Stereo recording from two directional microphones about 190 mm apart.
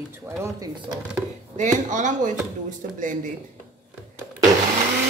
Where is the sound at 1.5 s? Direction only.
40° right (ahead or behind).